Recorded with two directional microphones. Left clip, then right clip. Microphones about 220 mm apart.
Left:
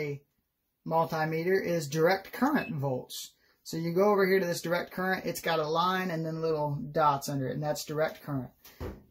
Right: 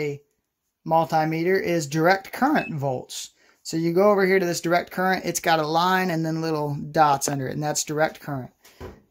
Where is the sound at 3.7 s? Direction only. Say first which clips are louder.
Right 7 dB; 45° right (ahead or behind).